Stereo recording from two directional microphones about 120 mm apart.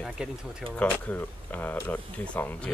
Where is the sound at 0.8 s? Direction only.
10° left (ahead or behind).